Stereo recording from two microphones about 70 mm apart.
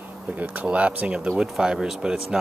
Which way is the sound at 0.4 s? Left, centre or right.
Centre.